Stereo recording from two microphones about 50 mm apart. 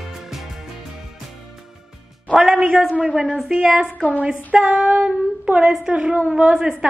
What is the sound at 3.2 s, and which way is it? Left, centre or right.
A woman's voice, centre.